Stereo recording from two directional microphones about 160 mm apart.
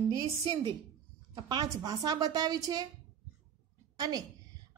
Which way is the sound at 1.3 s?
25° right (ahead or behind).